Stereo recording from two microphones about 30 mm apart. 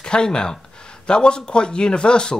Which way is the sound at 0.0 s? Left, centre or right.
Left.